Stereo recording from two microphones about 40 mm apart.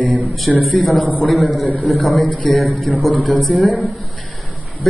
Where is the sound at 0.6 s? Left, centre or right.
Centre.